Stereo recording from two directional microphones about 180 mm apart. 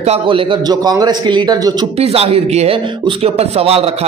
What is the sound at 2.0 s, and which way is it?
A man's voice, 35° right (ahead or behind).